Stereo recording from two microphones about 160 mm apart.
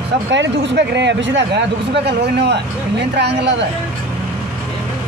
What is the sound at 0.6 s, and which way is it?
Speech, 90° right.